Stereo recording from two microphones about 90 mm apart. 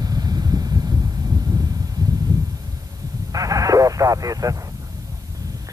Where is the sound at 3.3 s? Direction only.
40° right (ahead or behind).